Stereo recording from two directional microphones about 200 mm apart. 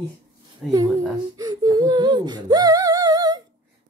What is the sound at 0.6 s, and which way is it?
Speech, 5° right (ahead or behind).